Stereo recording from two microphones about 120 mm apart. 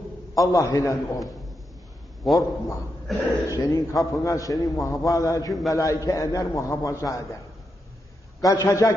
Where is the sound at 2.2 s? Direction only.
Centre (ahead or behind).